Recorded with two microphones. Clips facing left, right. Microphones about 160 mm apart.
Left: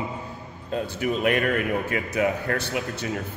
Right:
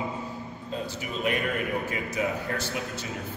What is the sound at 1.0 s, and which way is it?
Speech, 65° left (ahead or behind).